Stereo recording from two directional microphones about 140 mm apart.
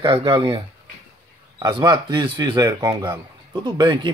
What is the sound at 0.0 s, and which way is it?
Speech, 35° right (ahead or behind).